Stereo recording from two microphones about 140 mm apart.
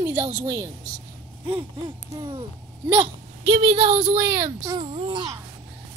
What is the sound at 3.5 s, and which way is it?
Speech, 45° right (ahead or behind).